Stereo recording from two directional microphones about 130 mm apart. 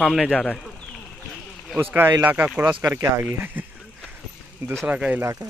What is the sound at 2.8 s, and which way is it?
Speech, 25° right (ahead or behind).